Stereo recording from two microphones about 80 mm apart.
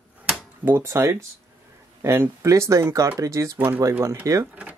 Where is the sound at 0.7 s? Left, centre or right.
Right.